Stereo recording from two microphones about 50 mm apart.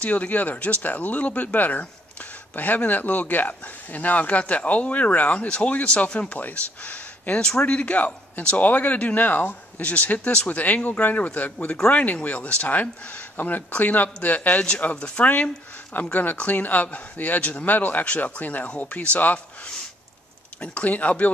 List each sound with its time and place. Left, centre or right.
0.0 s speech: left